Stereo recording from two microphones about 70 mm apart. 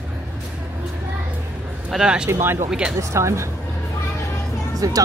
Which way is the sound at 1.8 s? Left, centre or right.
Centre.